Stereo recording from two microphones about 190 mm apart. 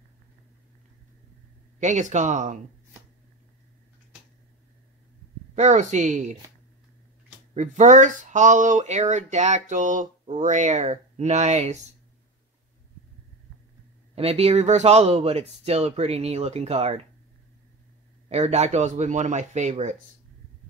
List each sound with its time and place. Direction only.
1.8 s speech: 40° right (ahead or behind)
5.6 s speech: 40° right (ahead or behind)
7.5 s speech: 40° right (ahead or behind)
14.1 s speech: 30° right (ahead or behind)
18.3 s speech: 35° right (ahead or behind)